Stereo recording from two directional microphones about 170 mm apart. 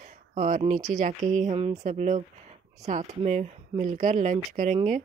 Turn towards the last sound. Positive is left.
turn(degrees=-50)  # may be behind; listen again after turning